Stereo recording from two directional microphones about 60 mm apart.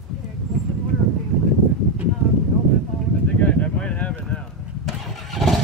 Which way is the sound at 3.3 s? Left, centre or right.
Left.